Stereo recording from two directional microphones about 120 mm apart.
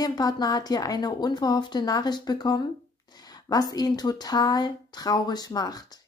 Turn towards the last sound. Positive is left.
turn(degrees=35)  # may be behind; listen again after turning